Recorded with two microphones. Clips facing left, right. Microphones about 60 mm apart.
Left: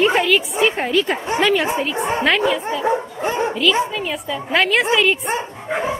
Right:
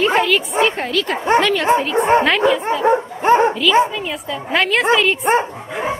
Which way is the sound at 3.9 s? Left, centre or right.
Centre.